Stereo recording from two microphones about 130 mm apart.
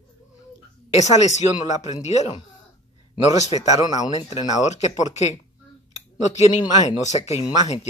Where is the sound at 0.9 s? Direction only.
60° left (ahead or behind).